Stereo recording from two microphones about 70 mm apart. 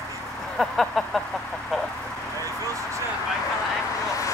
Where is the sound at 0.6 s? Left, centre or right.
Centre.